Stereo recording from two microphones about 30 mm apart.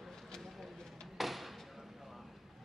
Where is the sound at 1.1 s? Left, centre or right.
Centre.